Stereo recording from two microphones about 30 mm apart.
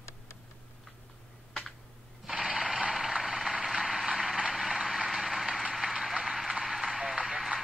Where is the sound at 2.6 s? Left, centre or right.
Centre.